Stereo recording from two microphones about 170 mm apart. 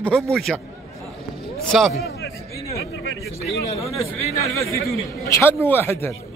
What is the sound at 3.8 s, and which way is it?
Speech, 35° left (ahead or behind).